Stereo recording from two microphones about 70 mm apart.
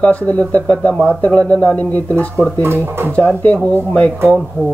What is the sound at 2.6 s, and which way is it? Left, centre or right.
Speech, right.